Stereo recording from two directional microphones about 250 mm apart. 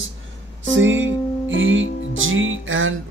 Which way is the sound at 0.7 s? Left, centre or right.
Right.